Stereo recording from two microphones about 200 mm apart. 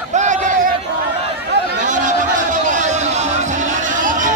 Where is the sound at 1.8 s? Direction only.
40° right (ahead or behind).